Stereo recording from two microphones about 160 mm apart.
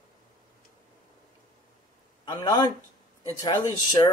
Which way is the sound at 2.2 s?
25° left (ahead or behind).